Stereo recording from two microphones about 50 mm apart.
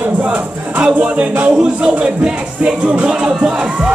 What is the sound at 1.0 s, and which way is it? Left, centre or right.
Speech, right.